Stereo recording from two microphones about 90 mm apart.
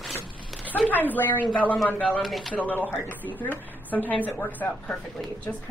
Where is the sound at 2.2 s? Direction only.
Centre (ahead or behind).